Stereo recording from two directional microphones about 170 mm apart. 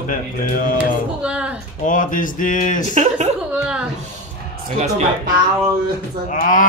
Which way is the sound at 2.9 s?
40° right (ahead or behind).